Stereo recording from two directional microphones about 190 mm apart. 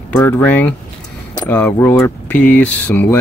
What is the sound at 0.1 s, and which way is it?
Speech, 10° left (ahead or behind).